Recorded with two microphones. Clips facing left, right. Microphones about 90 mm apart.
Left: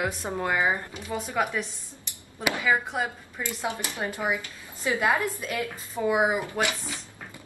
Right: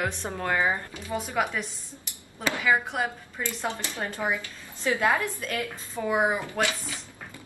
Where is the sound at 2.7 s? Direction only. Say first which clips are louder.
Right 2 dB; centre (ahead or behind).